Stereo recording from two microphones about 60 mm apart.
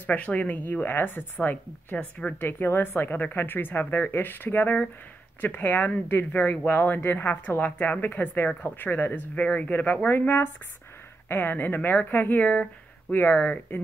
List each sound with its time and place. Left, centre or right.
0.0 s speech: left
2.0 s speech: left
2.4 s speech: left
9.3 s speech: left